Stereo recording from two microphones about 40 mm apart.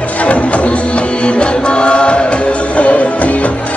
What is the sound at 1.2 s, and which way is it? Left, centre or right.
Music, left.